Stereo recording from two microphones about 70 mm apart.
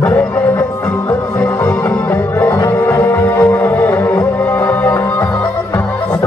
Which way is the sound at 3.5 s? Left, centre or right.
Left.